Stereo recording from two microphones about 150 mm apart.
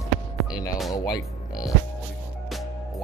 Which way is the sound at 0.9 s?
25° left (ahead or behind).